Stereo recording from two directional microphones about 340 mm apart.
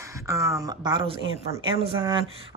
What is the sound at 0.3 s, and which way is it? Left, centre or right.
Speech, centre.